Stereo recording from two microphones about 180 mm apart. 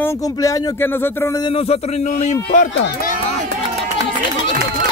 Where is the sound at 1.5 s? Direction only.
35° left (ahead or behind).